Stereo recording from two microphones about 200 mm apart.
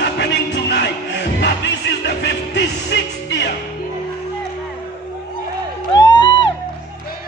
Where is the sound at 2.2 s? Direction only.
60° left (ahead or behind).